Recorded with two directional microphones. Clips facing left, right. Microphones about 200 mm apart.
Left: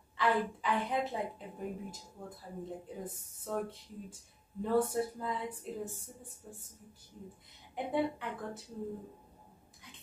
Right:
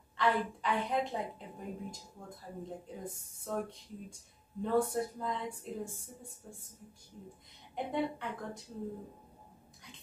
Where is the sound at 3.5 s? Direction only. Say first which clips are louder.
Left 1 dB; centre (ahead or behind).